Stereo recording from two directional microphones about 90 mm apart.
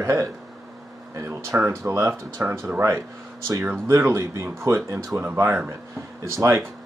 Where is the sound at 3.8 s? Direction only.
30° right (ahead or behind).